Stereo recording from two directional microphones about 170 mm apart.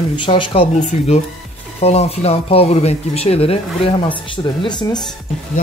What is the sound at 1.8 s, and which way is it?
Speech, 40° left (ahead or behind).